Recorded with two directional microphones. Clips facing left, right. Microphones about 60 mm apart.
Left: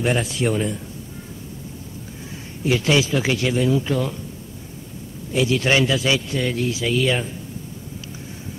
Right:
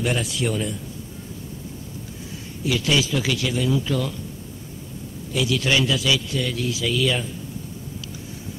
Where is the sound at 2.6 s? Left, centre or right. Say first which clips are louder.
Left 3 dB; left.